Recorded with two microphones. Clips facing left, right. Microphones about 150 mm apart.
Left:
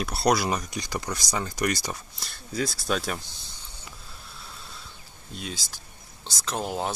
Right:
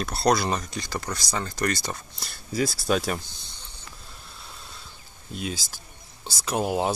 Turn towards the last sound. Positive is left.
turn(degrees=-10)  # may be behind; listen again after turning